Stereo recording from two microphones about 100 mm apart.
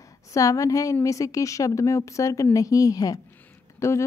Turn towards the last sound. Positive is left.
turn(degrees=30)  # may be behind; listen again after turning